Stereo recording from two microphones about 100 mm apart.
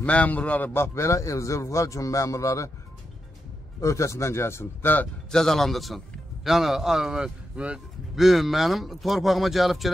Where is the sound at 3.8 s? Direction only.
30° left (ahead or behind).